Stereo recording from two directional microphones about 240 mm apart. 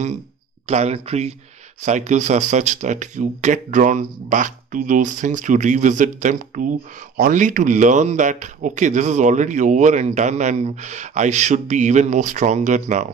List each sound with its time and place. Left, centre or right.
0.7 s speech: right